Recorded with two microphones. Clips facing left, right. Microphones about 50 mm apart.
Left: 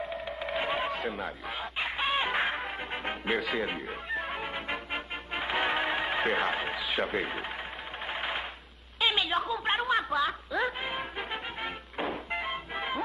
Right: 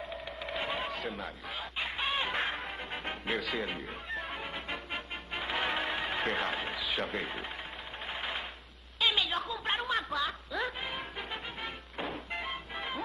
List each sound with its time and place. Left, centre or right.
0.5 s chicken: centre
7.1 s speech: centre
8.1 s a sound: centre
9.4 s music: centre